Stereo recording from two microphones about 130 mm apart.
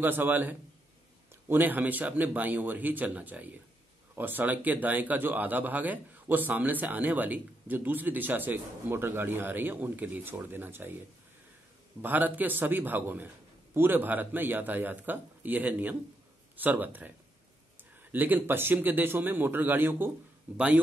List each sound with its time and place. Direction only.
0.0 s speech: 15° right (ahead or behind)
12.0 s speech: 15° right (ahead or behind)
18.1 s speech: 15° right (ahead or behind)